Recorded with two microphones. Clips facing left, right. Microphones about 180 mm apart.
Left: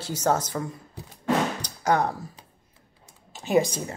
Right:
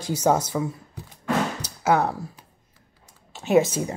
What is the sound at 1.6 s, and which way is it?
Music, 5° right (ahead or behind).